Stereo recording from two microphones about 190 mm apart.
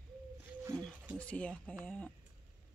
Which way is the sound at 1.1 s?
5° left (ahead or behind).